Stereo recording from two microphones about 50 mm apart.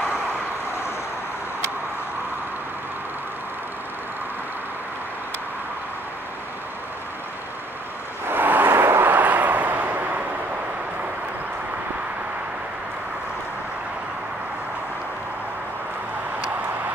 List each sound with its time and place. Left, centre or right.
8.3 s vehicle: right
9.1 s vehicle: right